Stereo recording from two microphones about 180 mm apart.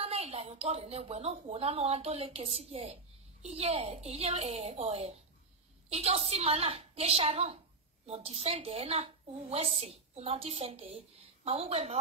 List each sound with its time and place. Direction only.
0.0 s a woman's voice: 35° right (ahead or behind)